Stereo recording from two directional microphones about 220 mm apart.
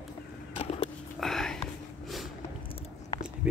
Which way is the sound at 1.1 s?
Centre (ahead or behind).